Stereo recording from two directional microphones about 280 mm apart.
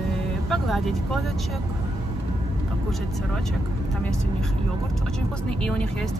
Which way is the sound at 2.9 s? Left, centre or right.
Centre.